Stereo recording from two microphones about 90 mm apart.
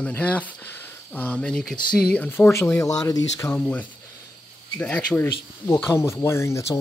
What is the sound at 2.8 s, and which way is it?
Speech, 40° left (ahead or behind).